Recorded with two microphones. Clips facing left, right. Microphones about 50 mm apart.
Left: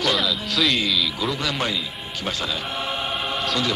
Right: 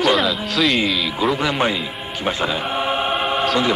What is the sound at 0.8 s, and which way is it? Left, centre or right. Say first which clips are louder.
Speech: right 4 dB; right.